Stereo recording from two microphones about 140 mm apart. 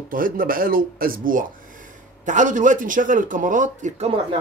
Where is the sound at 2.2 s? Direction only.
65° right (ahead or behind).